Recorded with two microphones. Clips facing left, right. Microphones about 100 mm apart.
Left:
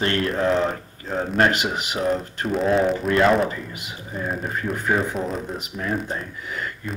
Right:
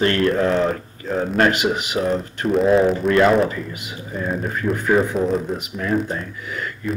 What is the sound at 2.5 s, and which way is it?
Speech, centre (ahead or behind).